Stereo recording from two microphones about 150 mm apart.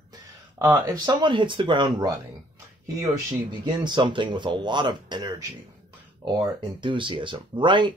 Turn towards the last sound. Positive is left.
turn(degrees=-30)  # may be behind; listen again after turning